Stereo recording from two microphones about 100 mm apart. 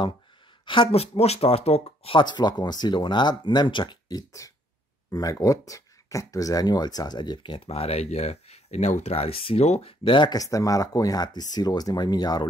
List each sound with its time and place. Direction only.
0.7 s speech: 65° left (ahead or behind)
2.1 s speech: 50° left (ahead or behind)
7.6 s speech: 90° left; by 10.4 s 50° left (ahead or behind)
10.4 s speech: 35° left (ahead or behind)